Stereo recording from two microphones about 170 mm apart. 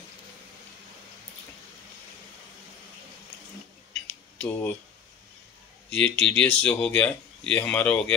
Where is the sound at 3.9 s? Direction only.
5° left (ahead or behind).